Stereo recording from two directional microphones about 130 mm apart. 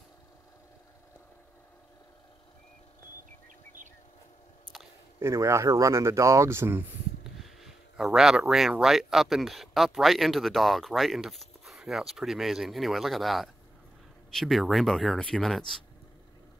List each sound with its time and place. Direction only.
5.2 s speech: 25° right (ahead or behind)
7.3 s speech: centre (ahead or behind)